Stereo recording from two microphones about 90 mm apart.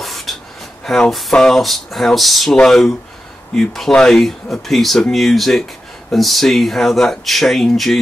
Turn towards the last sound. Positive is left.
turn(degrees=0)  # may be behind; listen again after turning